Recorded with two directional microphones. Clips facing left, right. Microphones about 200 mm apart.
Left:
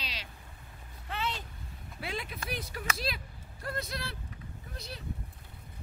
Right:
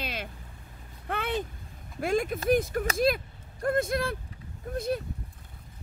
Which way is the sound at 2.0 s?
45° right (ahead or behind).